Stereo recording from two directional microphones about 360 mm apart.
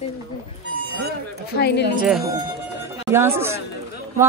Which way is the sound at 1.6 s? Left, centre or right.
Left.